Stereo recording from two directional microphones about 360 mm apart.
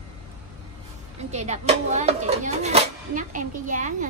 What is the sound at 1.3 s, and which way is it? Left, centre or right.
Speech, centre.